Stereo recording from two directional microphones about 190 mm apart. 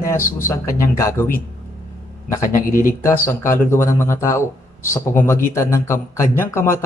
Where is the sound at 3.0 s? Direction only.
15° left (ahead or behind).